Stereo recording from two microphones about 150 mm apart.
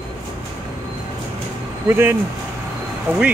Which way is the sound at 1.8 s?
15° right (ahead or behind).